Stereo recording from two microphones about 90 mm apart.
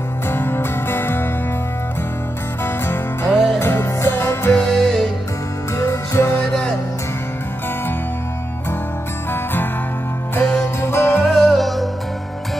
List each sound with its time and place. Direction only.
0.3 s music: 25° left (ahead or behind)
3.3 s music: centre (ahead or behind)
3.5 s music: 30° left (ahead or behind)
4.6 s music: 5° left (ahead or behind)
5.8 s music: 30° left (ahead or behind)
6.4 s music: 10° left (ahead or behind)
9.3 s music: 25° left (ahead or behind)
10.8 s music: 30° left (ahead or behind)
11.2 s music: centre (ahead or behind)